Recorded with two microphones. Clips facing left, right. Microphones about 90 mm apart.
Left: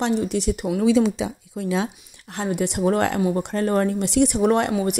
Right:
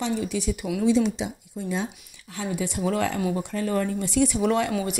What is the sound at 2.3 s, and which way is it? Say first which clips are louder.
Speech: left 5 dB; 65° left (ahead or behind).